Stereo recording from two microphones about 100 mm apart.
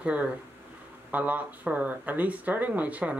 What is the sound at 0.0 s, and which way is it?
Speech, 15° right (ahead or behind).